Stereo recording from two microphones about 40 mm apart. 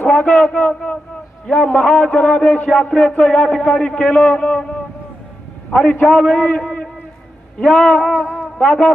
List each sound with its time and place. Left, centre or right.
0.0 s a man's voice: left
4.1 s a man's voice: left
8.3 s a sound: centre
8.6 s a man's voice: left